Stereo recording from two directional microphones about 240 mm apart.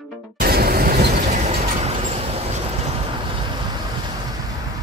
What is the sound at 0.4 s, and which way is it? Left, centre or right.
Music, right.